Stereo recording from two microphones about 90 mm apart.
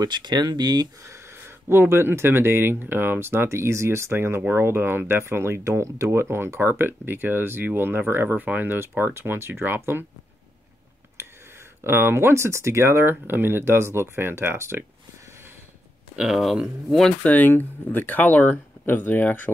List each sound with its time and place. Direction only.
0.0 s speech: 55° right (ahead or behind)
1.0 s speech: 30° right (ahead or behind)
11.8 s speech: 25° right (ahead or behind)
16.2 s speech: 5° right (ahead or behind)
17.2 s speech: 15° left (ahead or behind)